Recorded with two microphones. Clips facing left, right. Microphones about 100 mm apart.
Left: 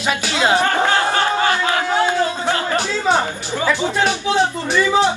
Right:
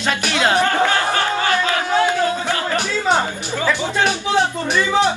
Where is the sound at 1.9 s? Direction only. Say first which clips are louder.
Right 3 dB; 20° left (ahead or behind).